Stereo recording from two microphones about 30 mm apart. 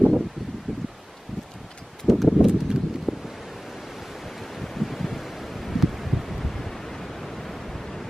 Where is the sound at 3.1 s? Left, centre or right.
Centre.